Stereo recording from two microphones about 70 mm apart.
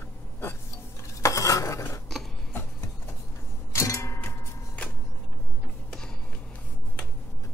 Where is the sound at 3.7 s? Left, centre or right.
Left.